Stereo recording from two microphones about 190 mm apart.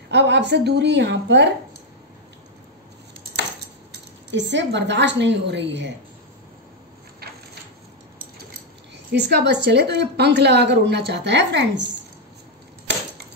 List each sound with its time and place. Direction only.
0.1 s a woman's voice: 65° right (ahead or behind)
4.3 s a woman's voice: 70° right (ahead or behind)
8.9 s a woman's voice: 60° right (ahead or behind)